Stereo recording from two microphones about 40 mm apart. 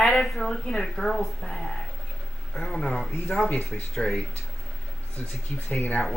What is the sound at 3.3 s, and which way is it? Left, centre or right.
Speech, left.